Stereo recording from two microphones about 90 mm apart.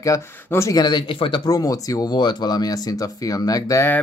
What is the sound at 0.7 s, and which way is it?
Speech, 55° left (ahead or behind).